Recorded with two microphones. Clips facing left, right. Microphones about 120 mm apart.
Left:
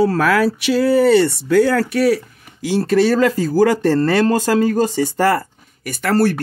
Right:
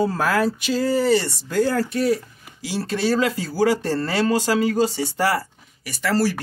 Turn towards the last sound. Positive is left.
turn(degrees=55)  # may be behind; listen again after turning